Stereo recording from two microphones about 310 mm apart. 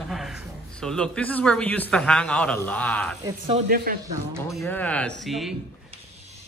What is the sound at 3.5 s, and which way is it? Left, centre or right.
Speech, right.